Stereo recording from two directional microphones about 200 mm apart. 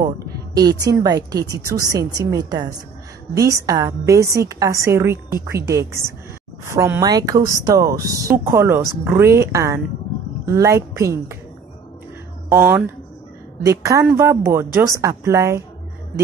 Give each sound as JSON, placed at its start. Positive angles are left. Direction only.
{"t": 0.6, "sound": "a woman's voice", "side_deg": -20}
{"t": 12.4, "sound": "a woman's voice", "side_deg": -10}